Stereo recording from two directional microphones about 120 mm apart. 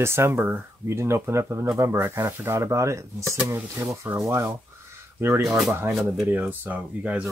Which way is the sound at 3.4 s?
15° right (ahead or behind).